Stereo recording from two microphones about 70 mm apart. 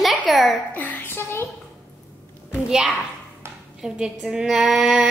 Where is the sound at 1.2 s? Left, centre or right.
Left.